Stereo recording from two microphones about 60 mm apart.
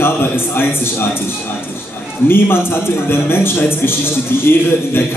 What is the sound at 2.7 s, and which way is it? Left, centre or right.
A man's voice, left.